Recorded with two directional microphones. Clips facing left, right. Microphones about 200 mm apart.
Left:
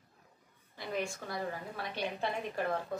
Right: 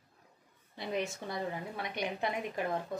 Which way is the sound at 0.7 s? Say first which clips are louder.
Right 1 dB; 20° right (ahead or behind).